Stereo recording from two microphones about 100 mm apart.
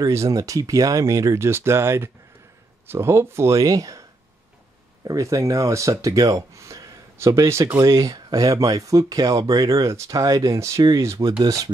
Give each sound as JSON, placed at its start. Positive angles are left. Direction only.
{"t": 0.0, "sound": "speech", "side_deg": -35}
{"t": 5.0, "sound": "speech", "side_deg": -35}